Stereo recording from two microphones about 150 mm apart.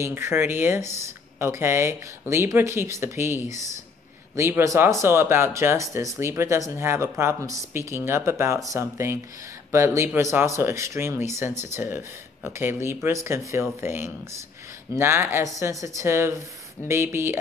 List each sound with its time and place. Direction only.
0.0 s speech: 15° right (ahead or behind)